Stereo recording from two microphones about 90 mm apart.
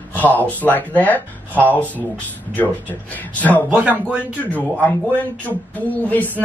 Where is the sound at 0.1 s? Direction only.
20° left (ahead or behind).